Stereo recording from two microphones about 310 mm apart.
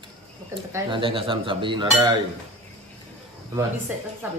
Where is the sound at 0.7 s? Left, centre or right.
Centre.